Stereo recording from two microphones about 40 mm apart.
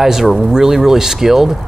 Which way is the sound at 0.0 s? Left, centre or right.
Centre.